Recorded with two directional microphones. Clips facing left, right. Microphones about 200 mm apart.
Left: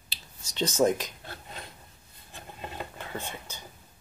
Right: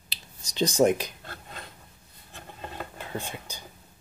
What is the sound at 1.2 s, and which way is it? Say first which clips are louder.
Dishes: even; 15° left (ahead or behind).